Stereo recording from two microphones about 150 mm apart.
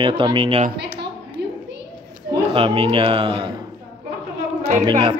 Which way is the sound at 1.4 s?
90° right.